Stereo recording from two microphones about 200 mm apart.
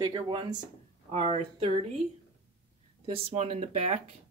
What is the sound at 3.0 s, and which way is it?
Speech, 30° right (ahead or behind).